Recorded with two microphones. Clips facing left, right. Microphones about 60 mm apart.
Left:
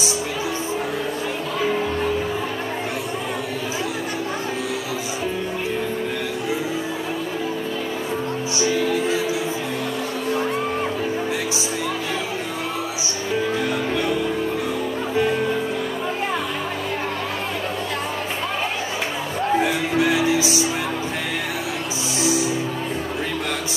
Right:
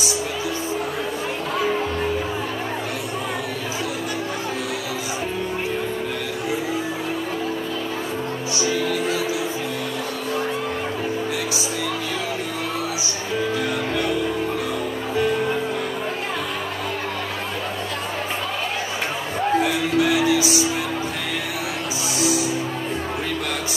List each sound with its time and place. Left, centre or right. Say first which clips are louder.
19.6 s music: even; left
22.2 s music: even; left